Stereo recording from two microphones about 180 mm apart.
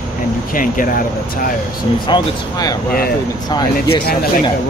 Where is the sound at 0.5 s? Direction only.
50° left (ahead or behind).